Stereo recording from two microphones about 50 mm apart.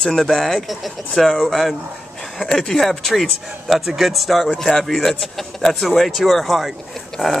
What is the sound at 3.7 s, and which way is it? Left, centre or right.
Speech, centre.